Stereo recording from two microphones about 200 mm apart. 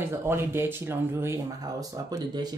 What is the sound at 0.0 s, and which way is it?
Speech, 15° right (ahead or behind).